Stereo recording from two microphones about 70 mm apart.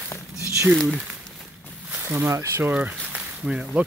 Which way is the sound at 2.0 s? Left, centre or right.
Right.